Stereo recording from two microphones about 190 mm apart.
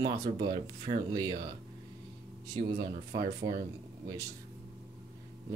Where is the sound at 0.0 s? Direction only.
20° right (ahead or behind).